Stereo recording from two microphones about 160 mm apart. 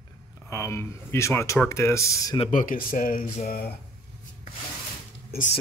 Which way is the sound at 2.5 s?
60° left (ahead or behind).